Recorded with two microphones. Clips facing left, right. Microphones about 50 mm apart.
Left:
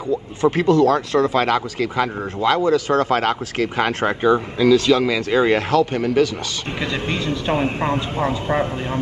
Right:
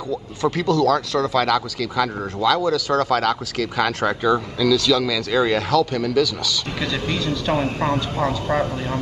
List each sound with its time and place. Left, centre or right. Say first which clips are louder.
0.1 s speech: left 4 dB; left